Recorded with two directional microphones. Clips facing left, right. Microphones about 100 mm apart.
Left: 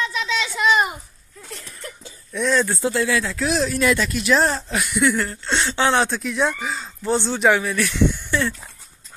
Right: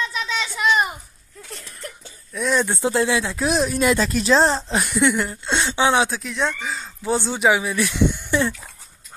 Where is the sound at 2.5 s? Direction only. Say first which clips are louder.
Right 1 dB; 20° right (ahead or behind).